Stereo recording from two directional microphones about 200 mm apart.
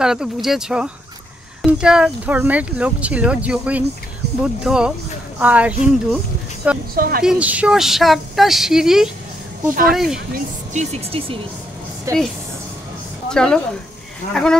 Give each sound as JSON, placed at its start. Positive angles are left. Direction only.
{"t": 0.0, "sound": "a woman's voice", "side_deg": -5}
{"t": 7.0, "sound": "a woman's voice", "side_deg": -50}
{"t": 7.2, "sound": "a woman's voice", "side_deg": -5}
{"t": 10.3, "sound": "speech", "side_deg": -35}
{"t": 12.1, "sound": "speech", "side_deg": -15}
{"t": 13.3, "sound": "a woman's voice", "side_deg": 5}